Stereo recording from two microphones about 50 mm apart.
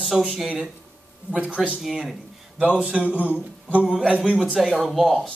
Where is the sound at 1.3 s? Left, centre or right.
Right.